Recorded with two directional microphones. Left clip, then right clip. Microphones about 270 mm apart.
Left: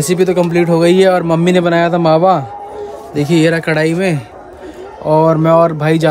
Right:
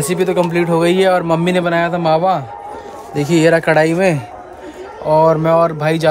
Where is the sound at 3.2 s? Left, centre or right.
Centre.